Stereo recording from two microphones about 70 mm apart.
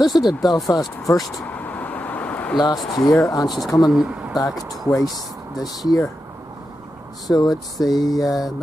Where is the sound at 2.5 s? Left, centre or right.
Left.